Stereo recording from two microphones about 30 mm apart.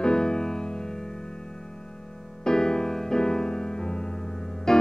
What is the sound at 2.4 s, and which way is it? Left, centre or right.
Music, left.